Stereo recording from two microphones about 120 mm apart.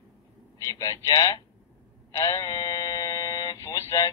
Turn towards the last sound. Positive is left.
turn(degrees=25)  # may be behind; listen again after turning